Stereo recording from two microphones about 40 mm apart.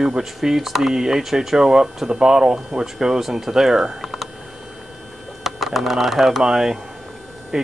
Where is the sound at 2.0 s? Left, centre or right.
Right; by 3.8 s centre.